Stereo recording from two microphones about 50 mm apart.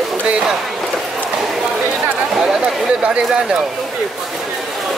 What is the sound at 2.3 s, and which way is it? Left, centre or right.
Speech, centre.